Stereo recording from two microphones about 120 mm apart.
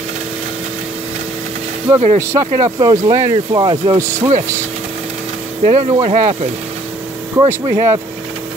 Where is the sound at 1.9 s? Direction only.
25° right (ahead or behind).